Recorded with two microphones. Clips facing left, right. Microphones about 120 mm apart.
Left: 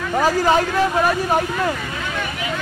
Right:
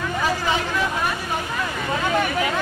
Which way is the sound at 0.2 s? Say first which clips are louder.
Left 7 dB; 40° left (ahead or behind).